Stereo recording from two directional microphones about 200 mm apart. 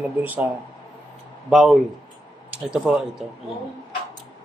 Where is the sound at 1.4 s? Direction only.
Centre (ahead or behind).